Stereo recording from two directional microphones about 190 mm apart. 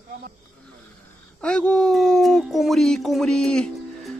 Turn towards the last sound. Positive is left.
turn(degrees=5)  # may be behind; listen again after turning